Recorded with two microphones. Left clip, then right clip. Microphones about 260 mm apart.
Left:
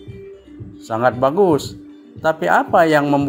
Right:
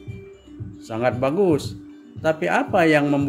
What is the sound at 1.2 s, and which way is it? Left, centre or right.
Speech, centre.